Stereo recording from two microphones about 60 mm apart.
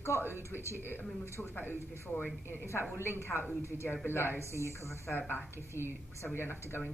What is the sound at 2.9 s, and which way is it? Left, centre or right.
A woman's voice, left.